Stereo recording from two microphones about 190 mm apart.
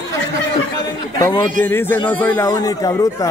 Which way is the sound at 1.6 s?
10° left (ahead or behind).